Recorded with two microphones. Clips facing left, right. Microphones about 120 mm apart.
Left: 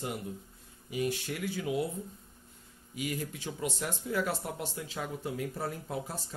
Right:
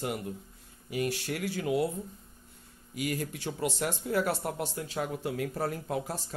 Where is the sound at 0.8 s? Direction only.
70° right (ahead or behind).